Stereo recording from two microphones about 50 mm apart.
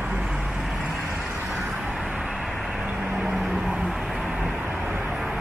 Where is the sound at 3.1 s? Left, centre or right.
Centre.